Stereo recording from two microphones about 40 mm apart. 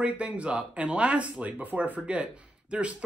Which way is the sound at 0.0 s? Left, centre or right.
Right.